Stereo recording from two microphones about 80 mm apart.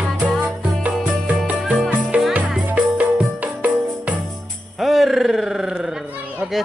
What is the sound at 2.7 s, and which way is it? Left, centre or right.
Music, centre.